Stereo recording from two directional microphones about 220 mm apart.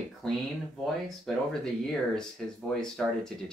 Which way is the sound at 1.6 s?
5° left (ahead or behind).